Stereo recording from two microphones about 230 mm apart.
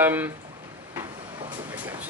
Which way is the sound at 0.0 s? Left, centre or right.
Centre.